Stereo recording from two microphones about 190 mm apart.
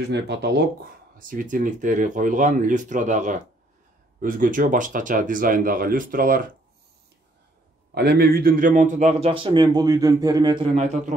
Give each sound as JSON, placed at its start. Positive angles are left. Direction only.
{"t": 0.1, "sound": "speech", "side_deg": -60}
{"t": 1.1, "sound": "speech", "side_deg": -45}
{"t": 7.9, "sound": "speech", "side_deg": -55}
{"t": 9.3, "sound": "a man's voice", "side_deg": -25}